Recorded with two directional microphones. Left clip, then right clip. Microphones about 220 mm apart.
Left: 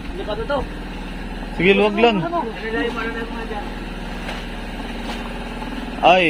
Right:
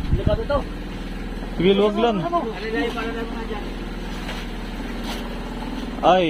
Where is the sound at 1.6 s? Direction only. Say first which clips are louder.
Left 3 dB; 15° left (ahead or behind).